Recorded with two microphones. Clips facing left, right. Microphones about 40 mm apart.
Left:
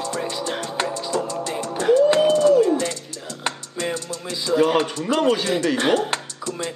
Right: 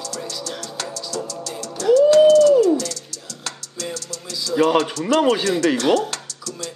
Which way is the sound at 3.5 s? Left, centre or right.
Left.